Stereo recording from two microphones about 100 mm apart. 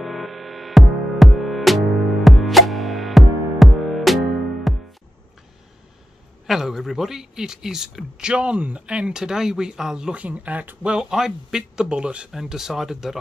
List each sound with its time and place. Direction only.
0.0 s music: centre (ahead or behind)
6.4 s a man's voice: 5° right (ahead or behind)